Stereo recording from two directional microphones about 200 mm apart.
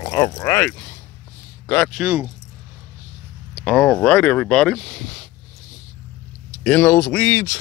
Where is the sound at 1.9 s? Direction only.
10° right (ahead or behind).